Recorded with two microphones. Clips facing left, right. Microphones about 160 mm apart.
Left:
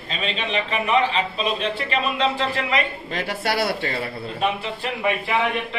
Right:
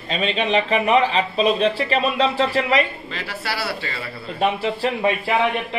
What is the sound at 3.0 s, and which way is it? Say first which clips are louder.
Speech: left 4 dB; 50° left (ahead or behind).